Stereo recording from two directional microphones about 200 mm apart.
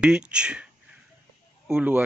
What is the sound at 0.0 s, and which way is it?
Speech, 5° right (ahead or behind).